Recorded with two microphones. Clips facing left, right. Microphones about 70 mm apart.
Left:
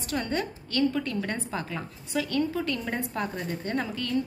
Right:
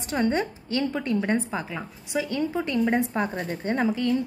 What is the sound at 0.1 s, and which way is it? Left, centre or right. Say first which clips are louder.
A woman's voice: right 5 dB; right.